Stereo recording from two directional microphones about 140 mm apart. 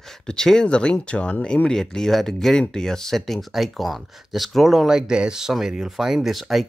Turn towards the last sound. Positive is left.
turn(degrees=0)  # may be behind; listen again after turning